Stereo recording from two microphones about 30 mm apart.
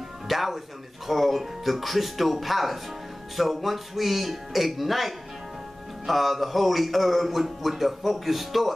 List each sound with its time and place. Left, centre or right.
0.3 s a man's voice: centre